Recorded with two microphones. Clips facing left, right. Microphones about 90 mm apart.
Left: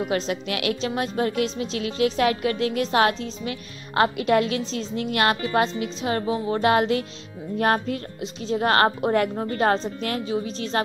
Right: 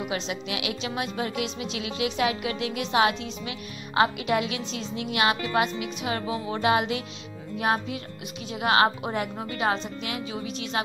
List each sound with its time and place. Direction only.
0.1 s speech: 50° left (ahead or behind)
8.2 s speech: 35° left (ahead or behind)